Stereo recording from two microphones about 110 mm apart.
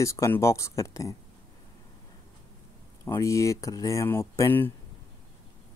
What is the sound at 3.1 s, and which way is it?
Speech, 30° left (ahead or behind).